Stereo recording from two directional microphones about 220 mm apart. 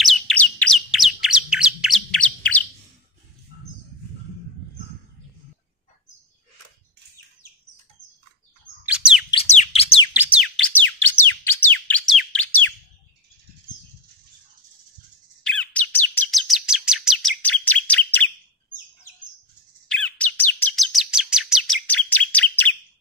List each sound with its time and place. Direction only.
0.0 s bird: 5° left (ahead or behind)
8.8 s bird: 5° right (ahead or behind)
9.3 s bird: 30° left (ahead or behind)
10.1 s a sound: 5° right (ahead or behind)
11.2 s music: 10° left (ahead or behind)
15.4 s chirp: 5° left (ahead or behind)
19.9 s chirp: 5° left (ahead or behind)